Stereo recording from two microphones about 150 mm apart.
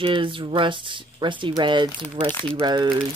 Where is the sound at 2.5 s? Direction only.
30° right (ahead or behind).